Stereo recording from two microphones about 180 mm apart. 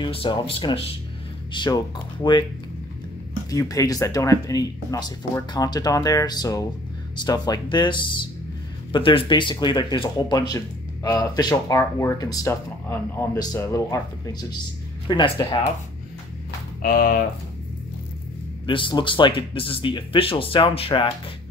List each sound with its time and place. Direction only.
0.0 s speech: 30° left (ahead or behind)
3.4 s speech: 20° left (ahead or behind)
16.8 s speech: 55° left (ahead or behind)
18.7 s speech: 25° left (ahead or behind)